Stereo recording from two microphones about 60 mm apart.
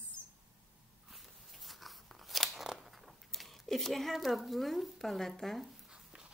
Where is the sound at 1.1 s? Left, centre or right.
Centre.